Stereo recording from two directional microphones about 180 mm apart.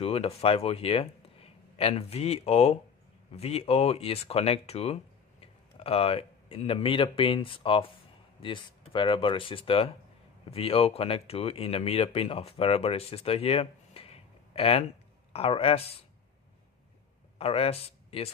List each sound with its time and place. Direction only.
0.0 s speech: 30° left (ahead or behind)
17.4 s speech: 35° left (ahead or behind)